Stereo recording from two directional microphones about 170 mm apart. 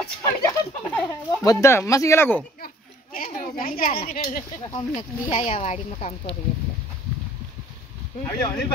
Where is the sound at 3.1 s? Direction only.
55° left (ahead or behind).